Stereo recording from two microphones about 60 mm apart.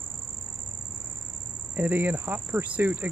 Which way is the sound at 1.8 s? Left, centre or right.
Right.